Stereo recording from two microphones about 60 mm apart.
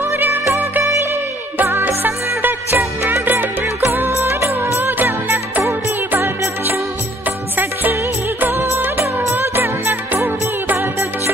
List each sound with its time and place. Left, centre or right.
0.0 s music: right
2.8 s music: right
4.1 s music of bollywood: right
4.6 s music: right
8.4 s music of bollywood: right
9.0 s music: right